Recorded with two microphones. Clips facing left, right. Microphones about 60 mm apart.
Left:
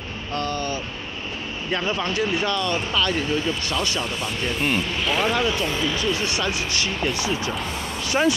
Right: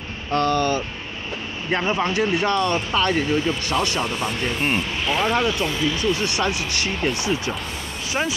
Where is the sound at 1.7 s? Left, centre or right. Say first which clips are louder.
Right 3 dB; right.